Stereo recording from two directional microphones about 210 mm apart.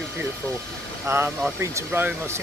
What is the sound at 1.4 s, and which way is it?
Speech, 10° right (ahead or behind).